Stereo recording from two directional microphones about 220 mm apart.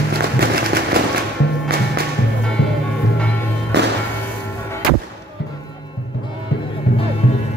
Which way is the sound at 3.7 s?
50° right (ahead or behind).